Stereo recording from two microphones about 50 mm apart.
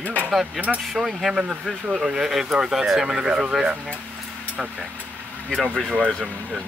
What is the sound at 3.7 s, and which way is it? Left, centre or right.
Speech, right.